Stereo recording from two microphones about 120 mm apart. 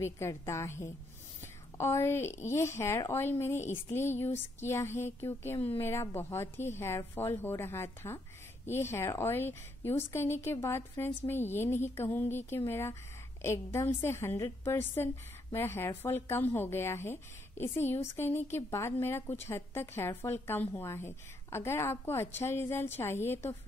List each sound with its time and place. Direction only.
0.0 s speech: 25° left (ahead or behind)